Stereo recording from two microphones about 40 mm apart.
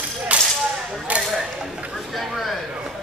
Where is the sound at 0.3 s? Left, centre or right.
Right.